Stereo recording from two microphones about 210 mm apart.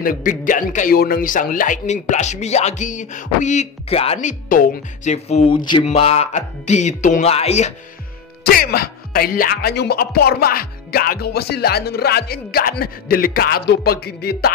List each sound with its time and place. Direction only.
0.0 s a man's voice: 40° left (ahead or behind)
8.5 s speech: 45° left (ahead or behind)